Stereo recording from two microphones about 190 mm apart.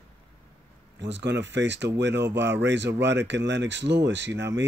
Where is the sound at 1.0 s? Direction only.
65° right (ahead or behind).